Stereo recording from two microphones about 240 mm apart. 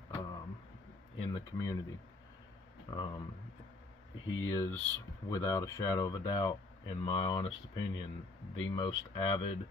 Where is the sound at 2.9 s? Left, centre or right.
Centre.